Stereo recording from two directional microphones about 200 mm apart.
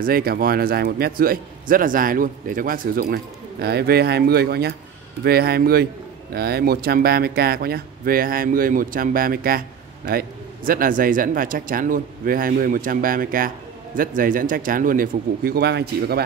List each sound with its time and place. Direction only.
0.0 s speech: 50° right (ahead or behind)